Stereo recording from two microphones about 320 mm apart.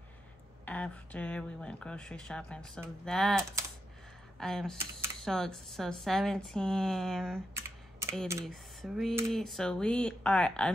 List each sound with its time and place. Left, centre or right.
0.7 s speech: centre